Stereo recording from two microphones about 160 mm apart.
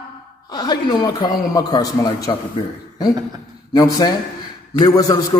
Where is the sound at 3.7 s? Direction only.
20° left (ahead or behind).